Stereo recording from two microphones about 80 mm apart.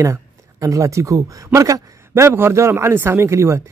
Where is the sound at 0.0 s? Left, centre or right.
Right.